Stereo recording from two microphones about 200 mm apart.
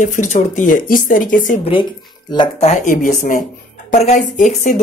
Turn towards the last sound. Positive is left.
turn(degrees=40)  # may be behind; listen again after turning